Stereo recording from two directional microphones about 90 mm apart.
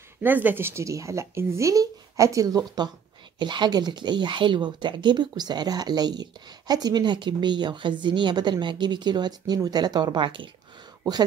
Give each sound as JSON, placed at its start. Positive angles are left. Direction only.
{"t": 0.2, "sound": "speech", "side_deg": -20}
{"t": 3.3, "sound": "a woman's voice", "side_deg": -60}